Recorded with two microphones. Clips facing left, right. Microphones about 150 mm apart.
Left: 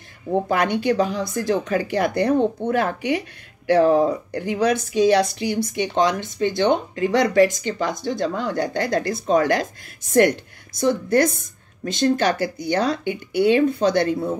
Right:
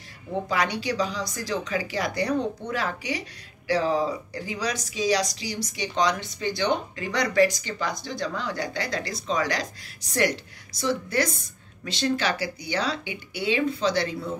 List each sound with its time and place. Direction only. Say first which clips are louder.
0.3 s speech: left 6 dB; 50° left (ahead or behind)